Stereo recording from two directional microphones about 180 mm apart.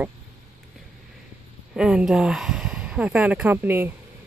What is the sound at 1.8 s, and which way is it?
Speech, 5° right (ahead or behind).